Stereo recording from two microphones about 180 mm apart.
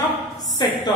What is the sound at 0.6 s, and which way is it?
Speech, 20° left (ahead or behind).